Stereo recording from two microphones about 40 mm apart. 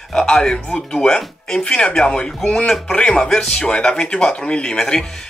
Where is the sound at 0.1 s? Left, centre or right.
Centre.